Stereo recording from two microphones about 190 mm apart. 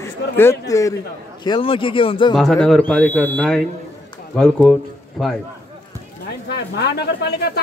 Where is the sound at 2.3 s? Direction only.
Centre (ahead or behind).